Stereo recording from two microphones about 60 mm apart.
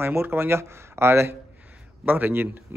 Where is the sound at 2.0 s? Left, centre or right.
Right.